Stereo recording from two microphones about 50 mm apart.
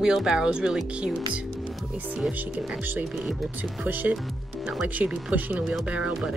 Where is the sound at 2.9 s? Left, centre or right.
Right.